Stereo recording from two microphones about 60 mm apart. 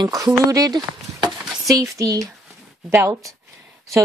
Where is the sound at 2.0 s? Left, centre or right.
Right.